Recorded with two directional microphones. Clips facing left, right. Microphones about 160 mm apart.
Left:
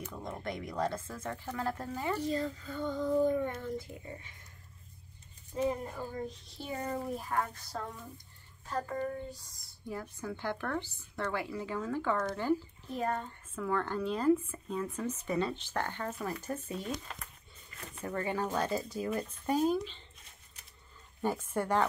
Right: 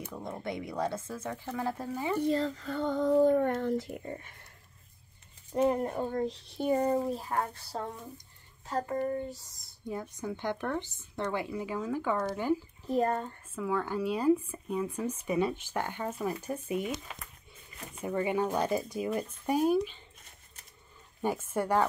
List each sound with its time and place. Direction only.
0.1 s speech: 10° right (ahead or behind)
2.2 s speech: 70° right (ahead or behind)
4.0 s speech: 55° right (ahead or behind)
5.5 s speech: 65° right (ahead or behind)
6.8 s speech: 30° right (ahead or behind)
8.6 s speech: 20° right (ahead or behind)
12.9 s speech: 40° right (ahead or behind)
13.6 s speech: 5° right (ahead or behind)
21.2 s speech: 10° right (ahead or behind)